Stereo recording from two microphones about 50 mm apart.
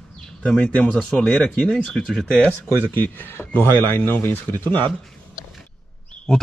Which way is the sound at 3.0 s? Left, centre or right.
Left.